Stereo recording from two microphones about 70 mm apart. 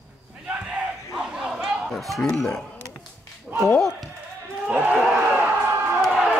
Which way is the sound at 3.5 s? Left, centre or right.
Centre.